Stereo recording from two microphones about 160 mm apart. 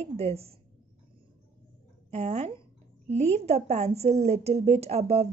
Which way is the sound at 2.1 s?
45° right (ahead or behind).